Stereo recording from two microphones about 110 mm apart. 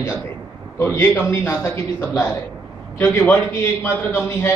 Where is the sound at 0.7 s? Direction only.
25° left (ahead or behind).